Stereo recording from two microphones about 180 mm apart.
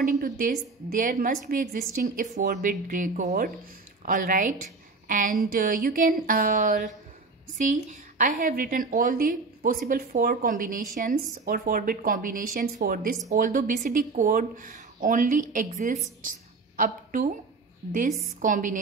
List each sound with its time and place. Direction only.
0.2 s a woman's voice: 55° right (ahead or behind)
16.2 s a sound: 50° right (ahead or behind)
17.9 s a woman's voice: 45° right (ahead or behind)